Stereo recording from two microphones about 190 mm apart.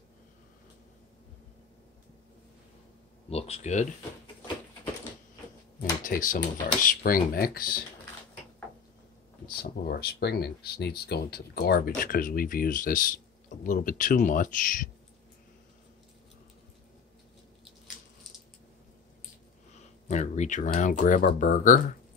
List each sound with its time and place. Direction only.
3.3 s speech: 30° left (ahead or behind)
5.8 s speech: 45° left (ahead or behind)
9.6 s speech: 55° left (ahead or behind)
20.1 s speech: 40° left (ahead or behind)